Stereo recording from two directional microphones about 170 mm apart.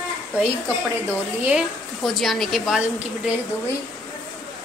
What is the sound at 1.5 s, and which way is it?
A woman's voice, centre (ahead or behind).